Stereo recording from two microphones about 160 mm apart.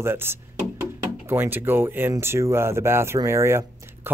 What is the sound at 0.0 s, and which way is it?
Speech, 15° right (ahead or behind).